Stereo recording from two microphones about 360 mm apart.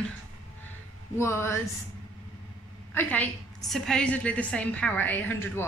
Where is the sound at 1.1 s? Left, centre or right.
Centre.